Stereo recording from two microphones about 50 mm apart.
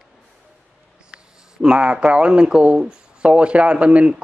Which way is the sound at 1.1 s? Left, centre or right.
Right.